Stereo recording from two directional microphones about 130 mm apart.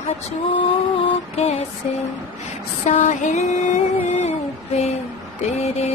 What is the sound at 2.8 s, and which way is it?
Music, 65° left (ahead or behind).